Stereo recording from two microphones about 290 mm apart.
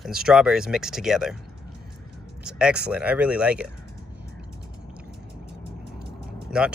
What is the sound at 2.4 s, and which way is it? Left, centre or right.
Speech, centre.